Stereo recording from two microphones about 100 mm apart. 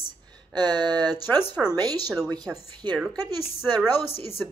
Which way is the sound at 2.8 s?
50° right (ahead or behind).